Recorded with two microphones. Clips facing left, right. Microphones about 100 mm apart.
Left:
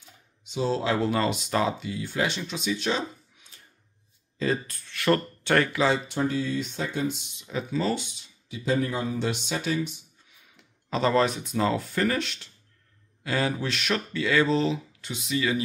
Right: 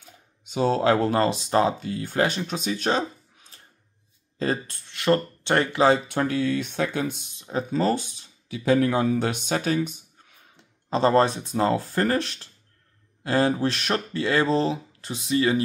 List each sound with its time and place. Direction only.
0.0 s speech: 55° right (ahead or behind); by 4.7 s 40° right (ahead or behind)
4.7 s speech: 20° right (ahead or behind)
5.8 s speech: 50° right (ahead or behind)
8.5 s speech: 65° right (ahead or behind); by 9.9 s 50° right (ahead or behind)
10.5 s speech: 30° right (ahead or behind)